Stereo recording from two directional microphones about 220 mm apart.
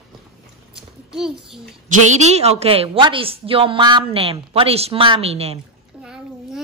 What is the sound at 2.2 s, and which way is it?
A woman's voice, 30° right (ahead or behind).